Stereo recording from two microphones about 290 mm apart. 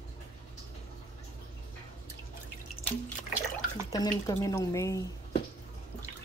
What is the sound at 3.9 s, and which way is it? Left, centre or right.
Speech, centre.